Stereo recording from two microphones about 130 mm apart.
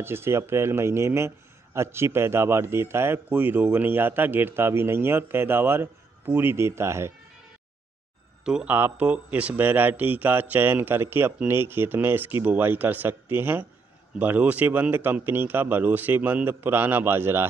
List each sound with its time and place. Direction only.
0.0 s a man's voice: 20° right (ahead or behind)
8.5 s speech: 10° right (ahead or behind)